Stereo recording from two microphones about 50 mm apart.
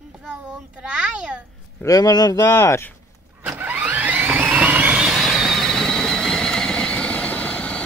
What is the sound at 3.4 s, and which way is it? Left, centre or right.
Vehicle, right.